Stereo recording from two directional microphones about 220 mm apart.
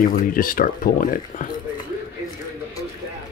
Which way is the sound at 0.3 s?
40° left (ahead or behind).